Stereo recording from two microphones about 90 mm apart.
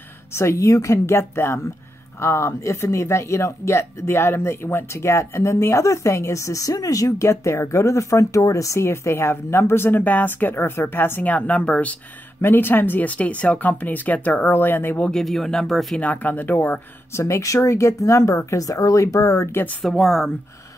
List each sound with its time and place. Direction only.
0.3 s speech: 30° left (ahead or behind); by 11.9 s 15° left (ahead or behind)
12.4 s speech: 25° left (ahead or behind)
15.0 s speech: 5° left (ahead or behind)
16.0 s speech: 15° left (ahead or behind)
17.2 s speech: 35° left (ahead or behind)
19.8 s speech: 5° left (ahead or behind)